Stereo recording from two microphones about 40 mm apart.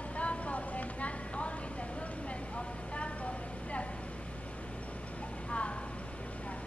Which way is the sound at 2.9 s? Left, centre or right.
Left.